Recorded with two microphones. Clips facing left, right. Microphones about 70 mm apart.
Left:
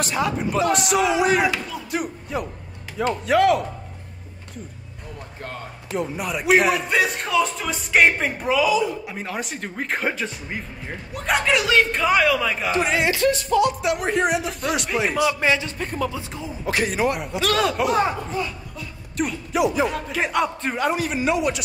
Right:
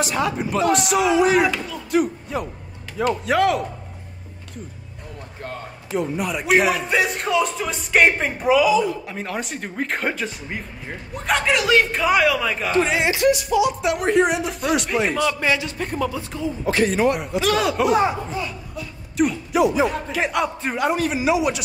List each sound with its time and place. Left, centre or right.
0.1 s speech: centre
5.9 s speech: centre
13.0 s speech: centre
15.4 s speech: left
15.8 s a woman's voice: right
16.2 s speech: centre
16.7 s speech: centre